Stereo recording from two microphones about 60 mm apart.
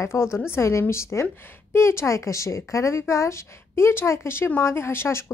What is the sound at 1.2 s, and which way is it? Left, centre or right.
Speech, left.